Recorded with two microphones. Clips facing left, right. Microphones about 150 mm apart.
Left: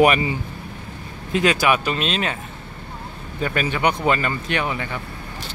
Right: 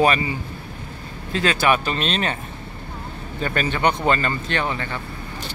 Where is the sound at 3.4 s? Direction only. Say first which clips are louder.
Even; 10° left (ahead or behind).